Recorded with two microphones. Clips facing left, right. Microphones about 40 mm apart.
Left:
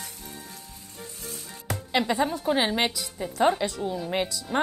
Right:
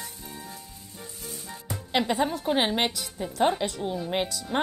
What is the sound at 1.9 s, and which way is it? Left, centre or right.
Speech, centre.